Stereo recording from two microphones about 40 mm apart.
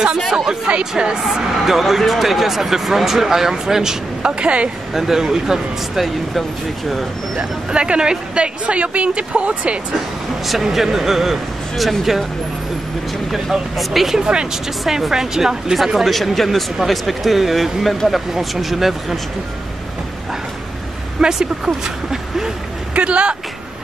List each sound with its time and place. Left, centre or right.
0.7 s speech: right
1.3 s speech: centre
4.2 s speech: right
4.9 s speech: centre
7.7 s speech: right
10.4 s a woman's voice: centre
13.3 s a woman's voice: centre
14.2 s speech: right
14.5 s a woman's voice: centre
21.2 s speech: centre
22.9 s speech: right